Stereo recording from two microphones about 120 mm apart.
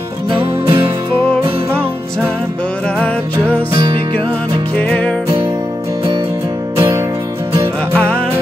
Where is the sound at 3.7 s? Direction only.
40° right (ahead or behind).